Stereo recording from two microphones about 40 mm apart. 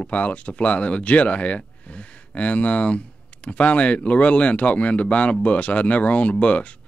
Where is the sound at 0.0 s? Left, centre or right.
Left.